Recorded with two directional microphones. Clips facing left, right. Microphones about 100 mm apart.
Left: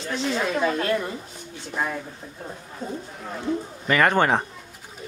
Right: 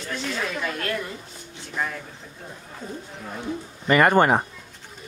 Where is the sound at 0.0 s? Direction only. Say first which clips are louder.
Left 4 dB; 20° left (ahead or behind).